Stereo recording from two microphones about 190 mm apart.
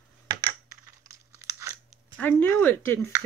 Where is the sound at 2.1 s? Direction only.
10° left (ahead or behind).